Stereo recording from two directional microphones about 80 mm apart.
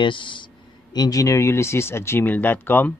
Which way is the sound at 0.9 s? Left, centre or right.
Left.